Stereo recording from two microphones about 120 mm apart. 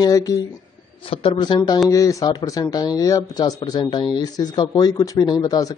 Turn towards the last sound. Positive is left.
turn(degrees=30)  # may be behind; listen again after turning